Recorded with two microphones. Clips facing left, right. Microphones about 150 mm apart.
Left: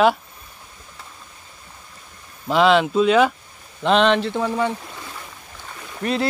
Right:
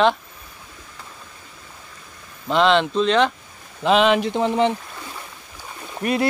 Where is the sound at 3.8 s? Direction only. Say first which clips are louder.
Even; 5° right (ahead or behind).